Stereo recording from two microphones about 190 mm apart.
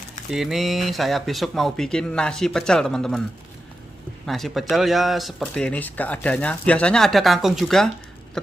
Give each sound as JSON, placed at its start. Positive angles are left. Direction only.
{"t": 0.3, "sound": "speech", "side_deg": 0}
{"t": 4.3, "sound": "speech", "side_deg": 0}